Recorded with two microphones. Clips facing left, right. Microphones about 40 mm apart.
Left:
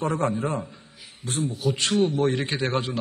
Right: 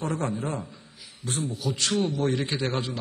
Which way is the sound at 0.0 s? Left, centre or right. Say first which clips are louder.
Left 4 dB; left.